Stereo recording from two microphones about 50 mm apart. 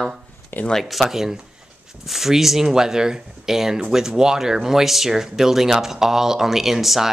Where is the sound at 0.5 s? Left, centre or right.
Left.